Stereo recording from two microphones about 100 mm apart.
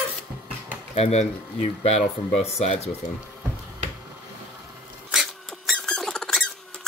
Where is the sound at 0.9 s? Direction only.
90° left.